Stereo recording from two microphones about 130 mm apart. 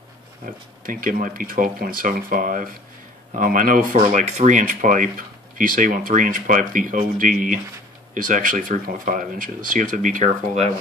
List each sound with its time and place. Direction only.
0.8 s speech: 90° right; by 10.7 s 60° right (ahead or behind)